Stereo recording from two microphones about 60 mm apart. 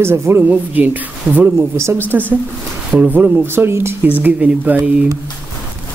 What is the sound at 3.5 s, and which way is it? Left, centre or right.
Speech, right.